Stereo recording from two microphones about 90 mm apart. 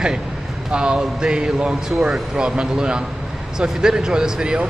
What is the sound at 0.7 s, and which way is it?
Speech, 10° right (ahead or behind).